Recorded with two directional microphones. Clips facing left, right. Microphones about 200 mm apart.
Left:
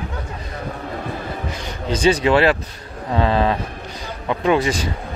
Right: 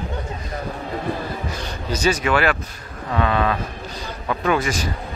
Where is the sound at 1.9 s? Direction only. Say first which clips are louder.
Left 4 dB; 30° left (ahead or behind).